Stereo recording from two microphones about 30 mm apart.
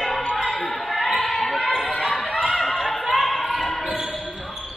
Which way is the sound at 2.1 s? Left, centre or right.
Left.